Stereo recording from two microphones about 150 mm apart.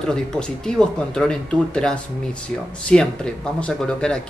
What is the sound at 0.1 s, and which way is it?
Speech, 5° left (ahead or behind).